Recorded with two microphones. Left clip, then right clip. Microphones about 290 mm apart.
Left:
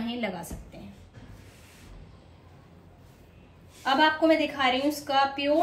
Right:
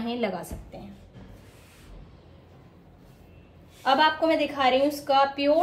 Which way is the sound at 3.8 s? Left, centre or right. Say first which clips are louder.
Right 1 dB; centre.